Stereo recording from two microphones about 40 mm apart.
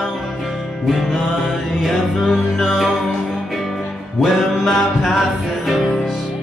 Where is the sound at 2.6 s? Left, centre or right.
Centre.